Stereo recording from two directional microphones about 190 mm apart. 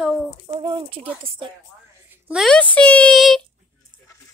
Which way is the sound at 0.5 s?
25° right (ahead or behind).